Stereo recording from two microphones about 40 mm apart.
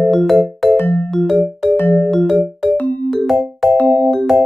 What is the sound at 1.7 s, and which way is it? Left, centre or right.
Music, left.